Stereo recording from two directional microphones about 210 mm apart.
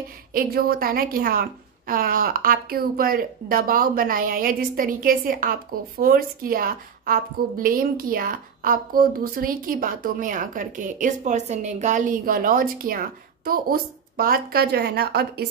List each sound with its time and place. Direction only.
0.3 s a woman's voice: 45° right (ahead or behind)